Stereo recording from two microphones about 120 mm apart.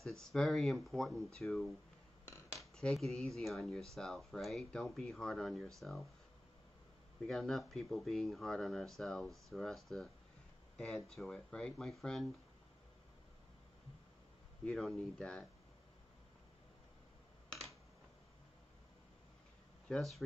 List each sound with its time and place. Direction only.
0.0 s speech: 5° left (ahead or behind)
2.2 s a sound: 20° left (ahead or behind)
2.8 s speech: 5° left (ahead or behind)
7.2 s speech: 5° left (ahead or behind)
11.1 s speech: 5° left (ahead or behind)
14.6 s speech: 5° left (ahead or behind)
19.9 s speech: centre (ahead or behind)